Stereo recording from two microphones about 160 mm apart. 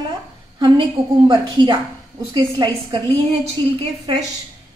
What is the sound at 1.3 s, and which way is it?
A woman's voice, 30° right (ahead or behind).